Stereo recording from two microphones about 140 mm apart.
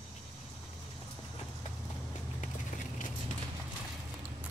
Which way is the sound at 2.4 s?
65° left (ahead or behind).